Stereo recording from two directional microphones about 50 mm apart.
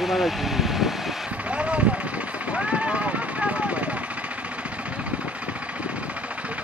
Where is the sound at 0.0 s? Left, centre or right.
Centre.